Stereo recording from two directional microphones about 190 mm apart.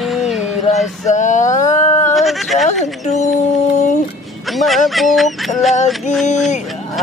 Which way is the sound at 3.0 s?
40° left (ahead or behind).